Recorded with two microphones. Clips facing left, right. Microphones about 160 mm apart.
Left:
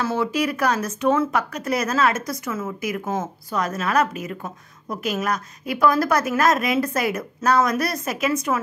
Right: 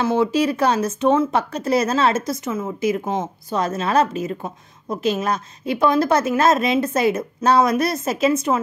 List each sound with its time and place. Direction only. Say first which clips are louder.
0.0 s speech: right 4 dB; 25° right (ahead or behind)